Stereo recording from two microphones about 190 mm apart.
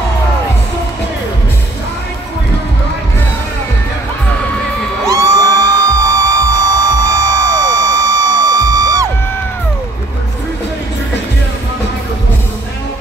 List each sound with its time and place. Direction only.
5.0 s music: 15° right (ahead or behind)